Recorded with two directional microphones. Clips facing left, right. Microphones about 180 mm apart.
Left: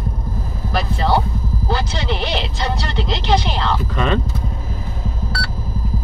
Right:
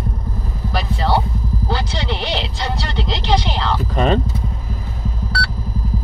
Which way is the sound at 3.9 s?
35° right (ahead or behind).